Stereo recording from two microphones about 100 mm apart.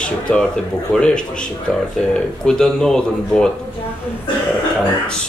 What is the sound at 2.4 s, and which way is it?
Speech, 5° left (ahead or behind).